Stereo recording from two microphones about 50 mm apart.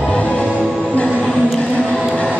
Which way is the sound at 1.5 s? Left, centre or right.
Left.